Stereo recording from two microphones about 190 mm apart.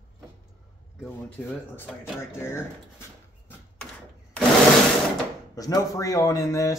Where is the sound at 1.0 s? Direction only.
10° left (ahead or behind).